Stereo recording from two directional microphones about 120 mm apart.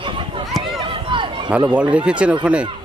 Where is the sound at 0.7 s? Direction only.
40° right (ahead or behind).